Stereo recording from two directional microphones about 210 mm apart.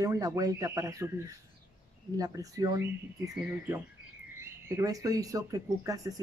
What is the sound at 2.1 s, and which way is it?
Speech, 15° right (ahead or behind).